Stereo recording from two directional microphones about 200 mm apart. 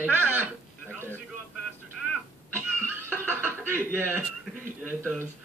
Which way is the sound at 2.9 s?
10° right (ahead or behind).